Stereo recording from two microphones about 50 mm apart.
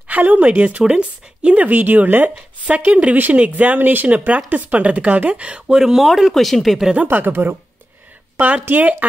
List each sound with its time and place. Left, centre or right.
0.1 s speech: right
5.8 s speech: centre
7.0 s speech: right
8.4 s speech: right